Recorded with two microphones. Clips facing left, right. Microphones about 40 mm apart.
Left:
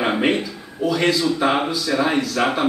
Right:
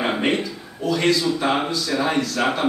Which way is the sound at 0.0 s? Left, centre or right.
Centre.